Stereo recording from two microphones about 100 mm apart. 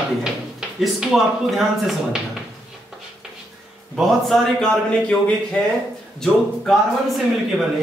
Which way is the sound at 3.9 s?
Centre (ahead or behind).